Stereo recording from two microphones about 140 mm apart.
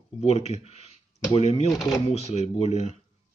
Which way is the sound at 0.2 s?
50° left (ahead or behind).